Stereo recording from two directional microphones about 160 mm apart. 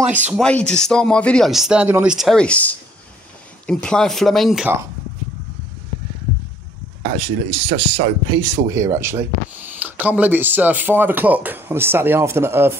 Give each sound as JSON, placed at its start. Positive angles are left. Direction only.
{"t": 0.3, "sound": "speech", "side_deg": 5}
{"t": 2.1, "sound": "speech", "side_deg": 5}
{"t": 7.0, "sound": "speech", "side_deg": -40}